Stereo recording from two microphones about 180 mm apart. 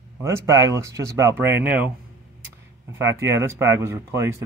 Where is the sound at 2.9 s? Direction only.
15° right (ahead or behind).